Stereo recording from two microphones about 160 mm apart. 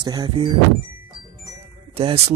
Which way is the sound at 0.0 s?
25° right (ahead or behind).